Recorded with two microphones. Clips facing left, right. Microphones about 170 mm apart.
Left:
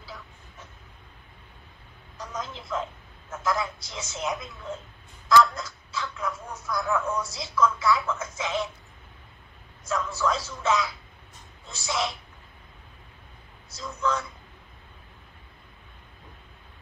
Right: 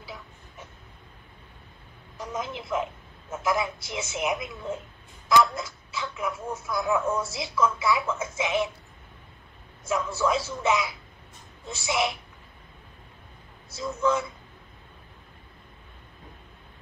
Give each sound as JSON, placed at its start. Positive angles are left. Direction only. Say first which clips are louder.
{"t": 0.0, "sound": "vehicle", "louder": "right 2 dB", "side_deg": -20}
{"t": 2.1, "sound": "a woman's voice", "louder": "right 3 dB", "side_deg": -20}
{"t": 5.3, "sound": "a sound", "louder": "left 1 dB", "side_deg": -20}
{"t": 7.3, "sound": "a man's voice", "louder": "left 1 dB", "side_deg": -20}
{"t": 9.8, "sound": "a man's voice", "louder": "right 2 dB", "side_deg": -20}